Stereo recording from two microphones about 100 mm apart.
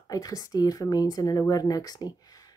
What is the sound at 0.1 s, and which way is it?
Speech, 35° left (ahead or behind).